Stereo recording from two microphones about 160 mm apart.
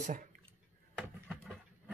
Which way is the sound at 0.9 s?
Centre (ahead or behind).